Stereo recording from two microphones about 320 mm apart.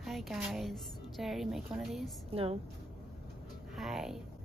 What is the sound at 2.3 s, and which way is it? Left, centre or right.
Speech, centre.